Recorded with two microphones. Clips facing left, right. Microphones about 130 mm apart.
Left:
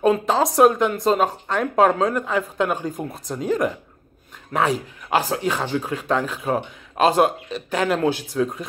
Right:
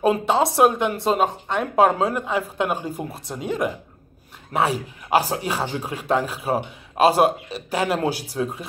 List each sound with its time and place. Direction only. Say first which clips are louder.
0.0 s speech: left 1 dB; 5° right (ahead or behind)
8.3 s speech: left 4 dB; 25° right (ahead or behind)